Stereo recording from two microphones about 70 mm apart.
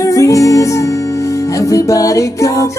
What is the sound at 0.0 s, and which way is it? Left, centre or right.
Music, left.